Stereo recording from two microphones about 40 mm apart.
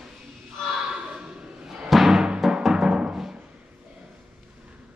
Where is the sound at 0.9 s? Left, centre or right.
Right.